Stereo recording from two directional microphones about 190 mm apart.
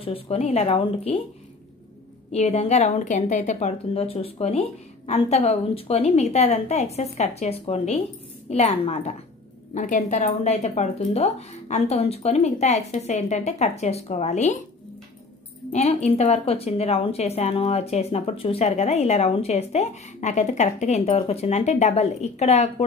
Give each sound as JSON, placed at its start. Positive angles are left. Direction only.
{"t": 0.0, "sound": "speech", "side_deg": 30}
{"t": 2.3, "sound": "speech", "side_deg": 35}
{"t": 15.7, "sound": "speech", "side_deg": 35}